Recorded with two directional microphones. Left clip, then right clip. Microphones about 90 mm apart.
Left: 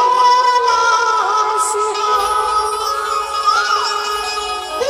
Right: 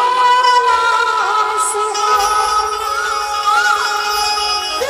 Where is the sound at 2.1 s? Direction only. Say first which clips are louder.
Right 3 dB; 20° right (ahead or behind).